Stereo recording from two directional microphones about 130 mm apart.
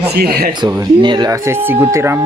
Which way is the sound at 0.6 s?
30° right (ahead or behind).